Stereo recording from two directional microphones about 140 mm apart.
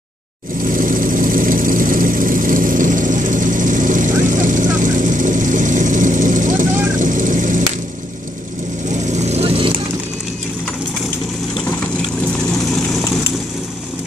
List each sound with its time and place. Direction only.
0.7 s vehicle: 75° right (ahead or behind)
9.1 s vehicle: 55° right (ahead or behind)